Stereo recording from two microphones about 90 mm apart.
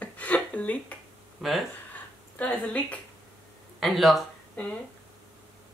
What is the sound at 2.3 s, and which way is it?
Speech, 15° left (ahead or behind).